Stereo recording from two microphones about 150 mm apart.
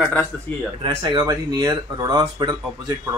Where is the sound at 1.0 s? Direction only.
20° right (ahead or behind).